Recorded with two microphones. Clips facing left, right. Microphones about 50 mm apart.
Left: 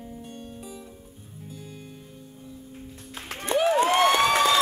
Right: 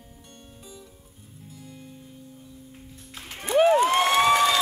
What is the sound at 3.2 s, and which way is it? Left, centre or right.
Music, left.